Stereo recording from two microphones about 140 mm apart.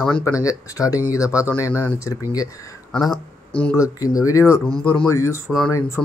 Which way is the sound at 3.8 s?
25° left (ahead or behind).